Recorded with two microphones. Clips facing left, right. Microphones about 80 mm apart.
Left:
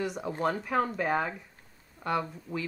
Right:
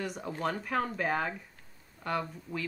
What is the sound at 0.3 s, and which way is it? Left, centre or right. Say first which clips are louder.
Speech: left 4 dB; left.